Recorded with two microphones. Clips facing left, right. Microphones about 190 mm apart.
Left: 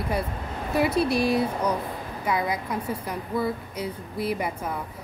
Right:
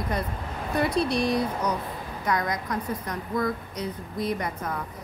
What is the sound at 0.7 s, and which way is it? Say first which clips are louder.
A woman's voice: left 2 dB; 5° left (ahead or behind).